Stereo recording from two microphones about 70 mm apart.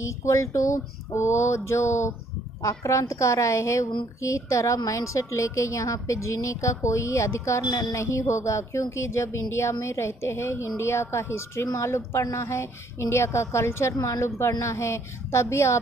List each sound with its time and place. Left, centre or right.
0.0 s a woman's voice: left
7.6 s speech: left
7.9 s a woman's voice: left